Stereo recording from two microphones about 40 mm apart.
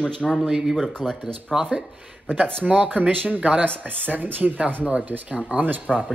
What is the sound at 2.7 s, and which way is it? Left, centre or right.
Speech, right.